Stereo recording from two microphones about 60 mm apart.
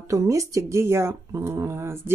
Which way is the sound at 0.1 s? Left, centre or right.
Right.